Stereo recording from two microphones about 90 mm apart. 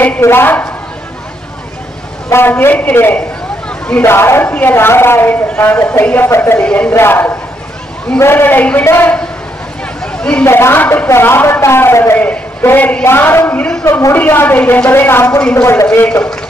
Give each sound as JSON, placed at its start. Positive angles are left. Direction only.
{"t": 0.2, "sound": "speech", "side_deg": 25}
{"t": 2.2, "sound": "speech", "side_deg": 25}
{"t": 6.6, "sound": "speech", "side_deg": 15}
{"t": 6.9, "sound": "speech", "side_deg": 25}
{"t": 10.4, "sound": "speech", "side_deg": 30}